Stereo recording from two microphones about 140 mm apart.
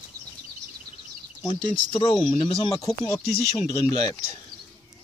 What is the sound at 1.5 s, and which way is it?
Speech, 35° left (ahead or behind).